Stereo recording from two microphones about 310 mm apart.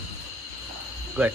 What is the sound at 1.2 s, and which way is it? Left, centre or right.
Speech, centre.